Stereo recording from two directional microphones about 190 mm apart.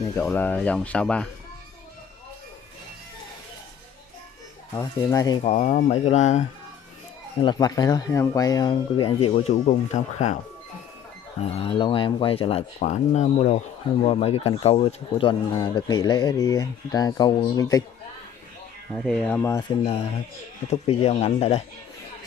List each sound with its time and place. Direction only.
0.2 s speech: 10° left (ahead or behind)
4.7 s speech: 20° left (ahead or behind)
5.4 s speech: 35° left (ahead or behind)
7.4 s speech: 20° left (ahead or behind); by 10.3 s 40° left (ahead or behind)
11.5 s speech: 30° left (ahead or behind)
18.9 s speech: 5° left (ahead or behind)
20.7 s speech: 30° left (ahead or behind)